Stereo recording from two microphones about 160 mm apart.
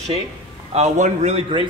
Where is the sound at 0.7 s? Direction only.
45° right (ahead or behind).